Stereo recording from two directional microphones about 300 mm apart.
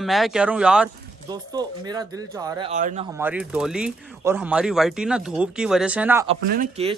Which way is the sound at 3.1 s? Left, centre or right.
Centre.